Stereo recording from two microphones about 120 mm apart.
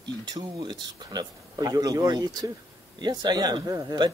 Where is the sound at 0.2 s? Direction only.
35° right (ahead or behind).